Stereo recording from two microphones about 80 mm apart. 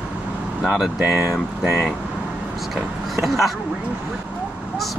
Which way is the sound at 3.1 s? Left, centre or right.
Centre.